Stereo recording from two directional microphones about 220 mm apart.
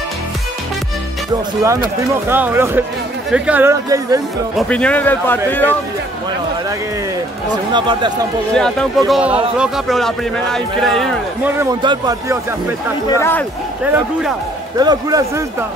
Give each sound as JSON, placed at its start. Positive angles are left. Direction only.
{"t": 1.6, "sound": "speech", "side_deg": -15}
{"t": 4.6, "sound": "a man's voice", "side_deg": 5}
{"t": 7.7, "sound": "speech", "side_deg": -20}
{"t": 8.5, "sound": "a man's voice", "side_deg": 5}
{"t": 11.6, "sound": "speech", "side_deg": -20}
{"t": 13.1, "sound": "speech", "side_deg": 10}
{"t": 14.8, "sound": "speech", "side_deg": -15}